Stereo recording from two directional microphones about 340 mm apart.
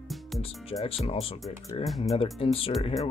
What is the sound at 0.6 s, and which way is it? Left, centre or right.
Speech, centre.